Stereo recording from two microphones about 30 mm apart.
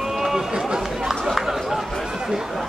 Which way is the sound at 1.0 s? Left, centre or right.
Centre.